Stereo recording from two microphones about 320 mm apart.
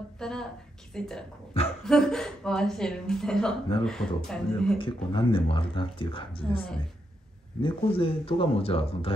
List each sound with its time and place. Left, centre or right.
0.2 s a woman's voice: centre
4.7 s speech: centre
7.6 s speech: centre